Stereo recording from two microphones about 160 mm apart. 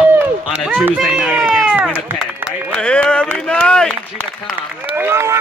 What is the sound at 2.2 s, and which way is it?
Speech, 5° left (ahead or behind).